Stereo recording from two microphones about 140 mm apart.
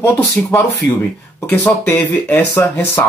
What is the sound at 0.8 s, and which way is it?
Speech, 75° right (ahead or behind).